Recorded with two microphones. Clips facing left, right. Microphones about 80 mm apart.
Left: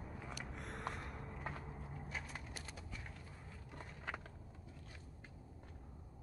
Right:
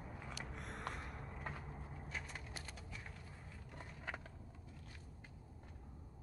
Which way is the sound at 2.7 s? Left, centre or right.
Centre.